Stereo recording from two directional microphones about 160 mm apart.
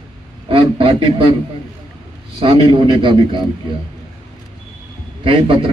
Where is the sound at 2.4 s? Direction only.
35° right (ahead or behind).